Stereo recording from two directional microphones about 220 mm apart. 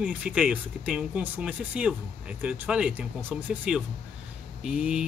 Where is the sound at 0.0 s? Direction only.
5° right (ahead or behind).